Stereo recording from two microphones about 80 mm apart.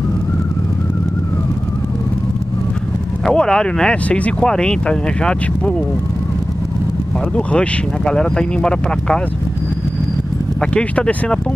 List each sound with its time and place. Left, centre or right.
3.3 s speech: centre
7.3 s speech: centre
10.6 s speech: centre